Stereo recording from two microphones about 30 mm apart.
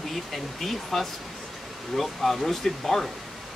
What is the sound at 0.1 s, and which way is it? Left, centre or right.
Speech, centre.